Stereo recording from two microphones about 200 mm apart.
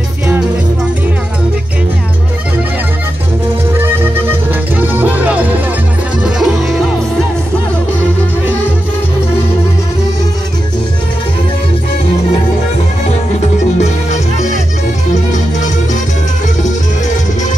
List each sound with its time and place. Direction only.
3.7 s music: 10° right (ahead or behind)
13.7 s music: 35° left (ahead or behind)